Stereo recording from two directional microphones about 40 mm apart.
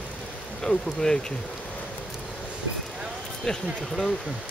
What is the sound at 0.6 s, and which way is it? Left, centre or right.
Speech, centre.